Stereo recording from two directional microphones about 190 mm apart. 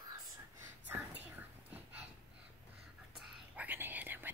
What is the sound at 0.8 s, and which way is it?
Whispering, 10° right (ahead or behind).